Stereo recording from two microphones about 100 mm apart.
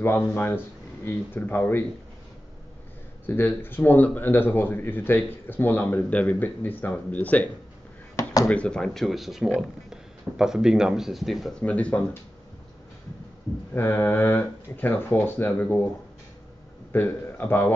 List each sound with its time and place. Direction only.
0.3 s speech: 20° left (ahead or behind)
3.3 s speech: 20° left (ahead or behind)
8.2 s a sound: 35° left (ahead or behind)
8.5 s speech: 10° left (ahead or behind)
11.6 s speech: 15° left (ahead or behind)
13.7 s speech: 20° left (ahead or behind)
16.9 s speech: 20° left (ahead or behind)